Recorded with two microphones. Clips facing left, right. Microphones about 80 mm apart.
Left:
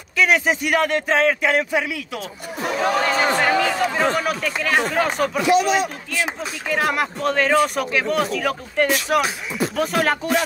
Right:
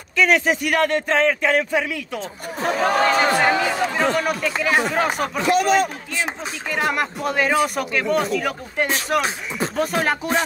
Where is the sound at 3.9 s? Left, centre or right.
Centre.